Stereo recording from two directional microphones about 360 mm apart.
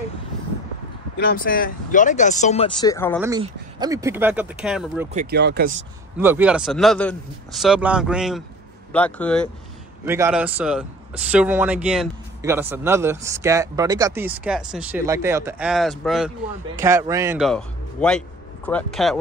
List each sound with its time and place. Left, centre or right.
1.2 s speech: left; by 3.2 s centre
3.2 s speech: centre
5.1 s speech: right
6.1 s a man's voice: centre